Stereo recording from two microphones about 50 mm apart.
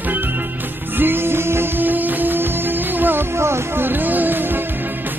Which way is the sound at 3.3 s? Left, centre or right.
Right.